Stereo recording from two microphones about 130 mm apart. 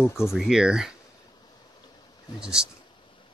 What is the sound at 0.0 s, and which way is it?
Speech, 20° left (ahead or behind).